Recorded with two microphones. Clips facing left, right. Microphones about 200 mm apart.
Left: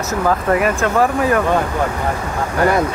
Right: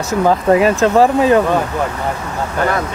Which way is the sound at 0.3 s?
25° right (ahead or behind).